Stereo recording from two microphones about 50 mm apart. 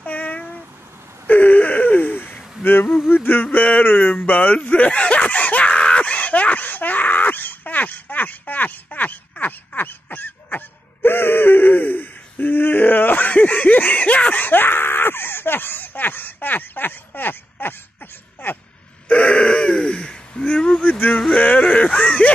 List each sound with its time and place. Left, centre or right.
0.0 s cat: left
1.2 s gasp: left
3.1 s a sound: left
3.5 s a sound: left
19.0 s gasp: left
21.1 s yodeling: centre
21.4 s whimper: left